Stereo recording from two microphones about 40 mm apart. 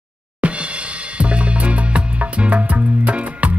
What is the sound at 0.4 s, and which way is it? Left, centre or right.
Music, right.